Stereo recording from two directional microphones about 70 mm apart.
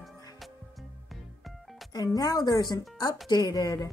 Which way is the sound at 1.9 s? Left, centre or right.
Left.